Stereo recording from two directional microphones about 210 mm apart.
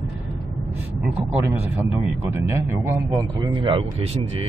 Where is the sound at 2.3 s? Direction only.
10° right (ahead or behind).